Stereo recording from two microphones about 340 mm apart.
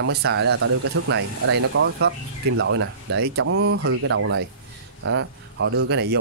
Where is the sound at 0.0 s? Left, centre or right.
Right.